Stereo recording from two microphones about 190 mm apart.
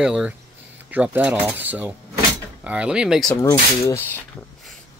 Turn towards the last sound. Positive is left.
turn(degrees=10)  # may be behind; listen again after turning